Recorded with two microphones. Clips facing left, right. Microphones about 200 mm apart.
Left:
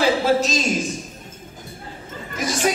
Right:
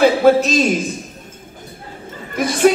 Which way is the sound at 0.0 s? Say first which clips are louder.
Right 6 dB; 55° right (ahead or behind).